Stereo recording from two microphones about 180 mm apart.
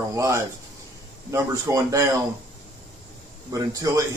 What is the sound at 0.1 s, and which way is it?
Speech, 15° right (ahead or behind).